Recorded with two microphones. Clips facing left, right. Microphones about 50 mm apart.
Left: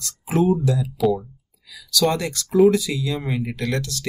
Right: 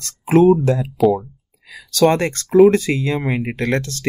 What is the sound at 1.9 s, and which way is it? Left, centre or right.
Speech, right.